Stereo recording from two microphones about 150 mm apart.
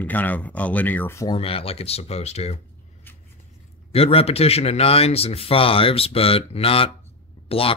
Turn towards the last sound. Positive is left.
turn(degrees=40)  # may be behind; listen again after turning